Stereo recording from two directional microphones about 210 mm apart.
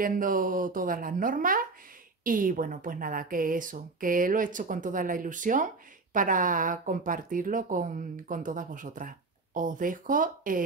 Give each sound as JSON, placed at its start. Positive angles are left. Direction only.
{"t": 0.0, "sound": "speech", "side_deg": -40}